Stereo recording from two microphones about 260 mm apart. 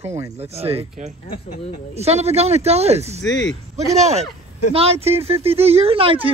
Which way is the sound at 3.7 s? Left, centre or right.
Right.